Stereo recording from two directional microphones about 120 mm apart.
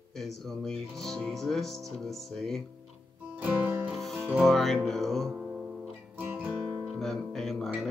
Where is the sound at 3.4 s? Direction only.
15° right (ahead or behind).